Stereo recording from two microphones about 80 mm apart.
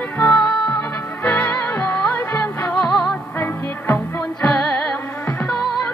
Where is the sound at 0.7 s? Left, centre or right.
Left.